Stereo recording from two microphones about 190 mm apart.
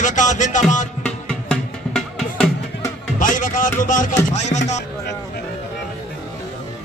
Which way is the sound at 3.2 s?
45° left (ahead or behind).